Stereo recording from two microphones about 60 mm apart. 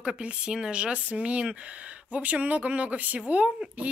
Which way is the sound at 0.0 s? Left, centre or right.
Centre.